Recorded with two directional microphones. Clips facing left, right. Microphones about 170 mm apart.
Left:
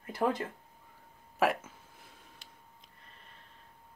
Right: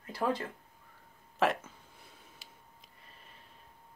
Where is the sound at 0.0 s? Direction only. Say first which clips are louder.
Left 2 dB; 20° left (ahead or behind).